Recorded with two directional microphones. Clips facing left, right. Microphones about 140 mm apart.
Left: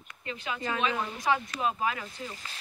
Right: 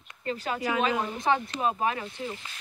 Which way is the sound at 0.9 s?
25° right (ahead or behind).